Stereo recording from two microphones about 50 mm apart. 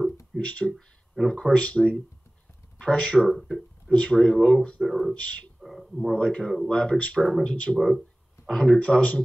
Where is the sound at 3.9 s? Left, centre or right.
Centre.